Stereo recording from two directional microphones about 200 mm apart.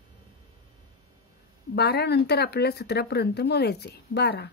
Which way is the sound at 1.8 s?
55° left (ahead or behind).